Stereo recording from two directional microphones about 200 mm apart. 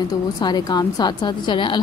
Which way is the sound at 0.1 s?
20° left (ahead or behind).